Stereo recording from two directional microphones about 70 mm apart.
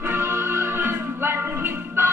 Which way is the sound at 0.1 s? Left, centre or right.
Right.